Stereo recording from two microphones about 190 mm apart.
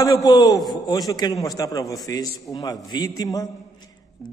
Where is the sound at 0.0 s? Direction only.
20° left (ahead or behind).